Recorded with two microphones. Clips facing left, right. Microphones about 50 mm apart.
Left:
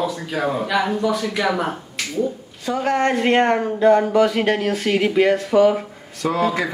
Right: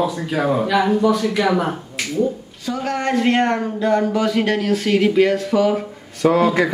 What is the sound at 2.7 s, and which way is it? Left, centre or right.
Speech, centre.